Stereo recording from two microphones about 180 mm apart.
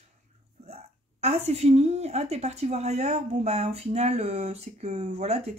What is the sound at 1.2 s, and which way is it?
A woman's voice, 35° right (ahead or behind).